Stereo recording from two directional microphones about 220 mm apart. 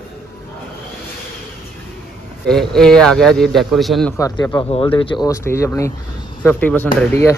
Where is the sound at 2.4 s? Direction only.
Centre (ahead or behind).